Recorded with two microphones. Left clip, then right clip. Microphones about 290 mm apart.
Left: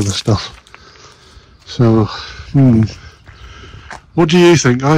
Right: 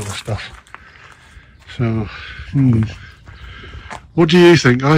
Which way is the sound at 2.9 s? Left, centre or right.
Centre.